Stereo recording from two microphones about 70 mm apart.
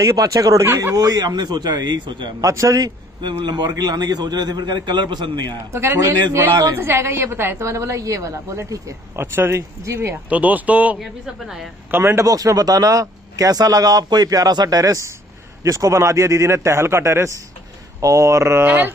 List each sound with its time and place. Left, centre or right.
0.0 s a man's voice: right
0.9 s a man's voice: right
2.4 s a man's voice: right
5.7 s a woman's voice: right
9.2 s a woman's voice: right
10.3 s speech: right
11.0 s speech: centre
11.9 s a woman's voice: right
12.3 s a man's voice: right